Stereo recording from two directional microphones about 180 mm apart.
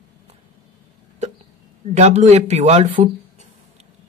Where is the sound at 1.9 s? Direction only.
35° right (ahead or behind).